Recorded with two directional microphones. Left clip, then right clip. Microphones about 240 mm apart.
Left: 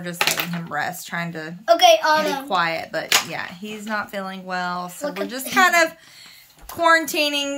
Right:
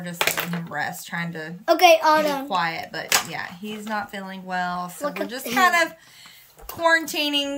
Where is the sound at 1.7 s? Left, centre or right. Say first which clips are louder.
Left 1 dB; right.